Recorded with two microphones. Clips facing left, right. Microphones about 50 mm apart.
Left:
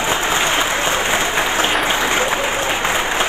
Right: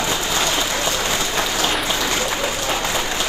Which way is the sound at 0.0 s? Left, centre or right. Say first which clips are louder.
Left 4 dB; left.